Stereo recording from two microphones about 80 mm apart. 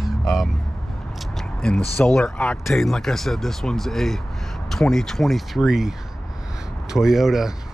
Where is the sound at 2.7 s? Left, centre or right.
Centre.